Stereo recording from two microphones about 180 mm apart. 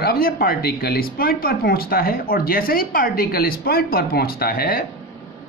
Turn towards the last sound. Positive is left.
turn(degrees=55)  # may be behind; listen again after turning